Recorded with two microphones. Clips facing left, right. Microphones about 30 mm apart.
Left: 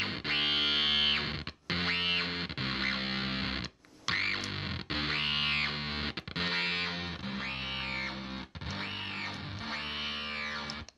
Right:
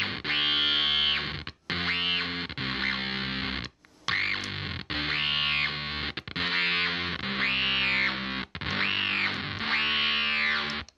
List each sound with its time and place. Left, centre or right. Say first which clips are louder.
0.0 s music: right 4 dB; centre
6.6 s music: right 6 dB; right
7.2 s music: right 12 dB; right